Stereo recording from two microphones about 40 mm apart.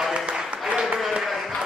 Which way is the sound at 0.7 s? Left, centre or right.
Centre.